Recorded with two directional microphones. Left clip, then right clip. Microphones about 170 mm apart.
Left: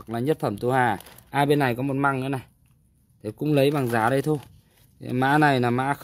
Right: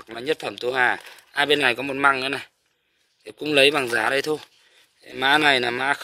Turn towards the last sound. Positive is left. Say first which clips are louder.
# right 3 dB
turn(degrees=15)  # may be behind; listen again after turning